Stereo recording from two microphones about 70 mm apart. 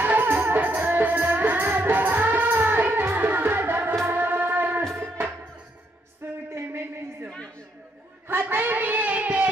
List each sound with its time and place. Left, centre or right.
0.0 s music: right
6.5 s music: right
8.3 s a sound: right